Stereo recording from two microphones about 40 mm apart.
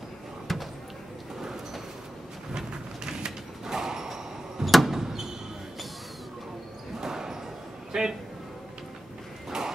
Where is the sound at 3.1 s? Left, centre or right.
Centre.